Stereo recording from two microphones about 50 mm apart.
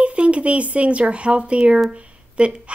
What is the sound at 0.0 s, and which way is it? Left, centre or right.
Speech, right.